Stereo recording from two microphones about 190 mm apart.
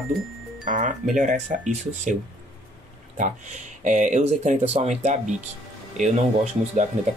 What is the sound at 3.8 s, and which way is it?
Speech, 40° right (ahead or behind).